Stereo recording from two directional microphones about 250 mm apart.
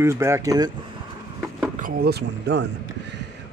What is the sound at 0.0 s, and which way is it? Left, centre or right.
Speech, centre.